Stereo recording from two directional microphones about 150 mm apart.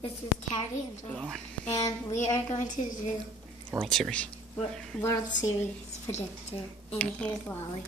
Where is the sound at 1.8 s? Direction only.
25° left (ahead or behind).